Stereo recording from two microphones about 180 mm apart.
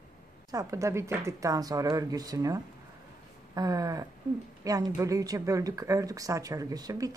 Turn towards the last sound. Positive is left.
turn(degrees=-20)  # may be behind; listen again after turning